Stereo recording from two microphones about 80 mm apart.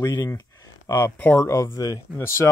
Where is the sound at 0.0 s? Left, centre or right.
Left.